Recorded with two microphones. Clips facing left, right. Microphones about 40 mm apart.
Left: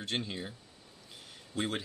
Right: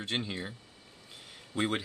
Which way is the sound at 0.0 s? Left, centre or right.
Right.